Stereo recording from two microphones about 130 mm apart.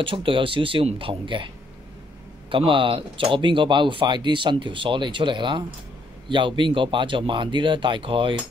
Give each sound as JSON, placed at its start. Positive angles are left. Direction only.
{"t": 0.0, "sound": "speech", "side_deg": -40}
{"t": 2.5, "sound": "speech", "side_deg": -40}